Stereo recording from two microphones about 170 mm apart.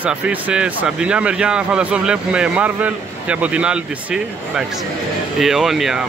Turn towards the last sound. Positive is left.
turn(degrees=-5)  # may be behind; listen again after turning